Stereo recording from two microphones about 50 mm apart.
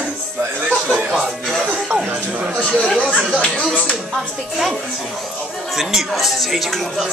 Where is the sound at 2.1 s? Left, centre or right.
Right.